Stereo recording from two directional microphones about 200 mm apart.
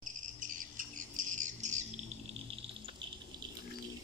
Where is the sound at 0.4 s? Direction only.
40° right (ahead or behind).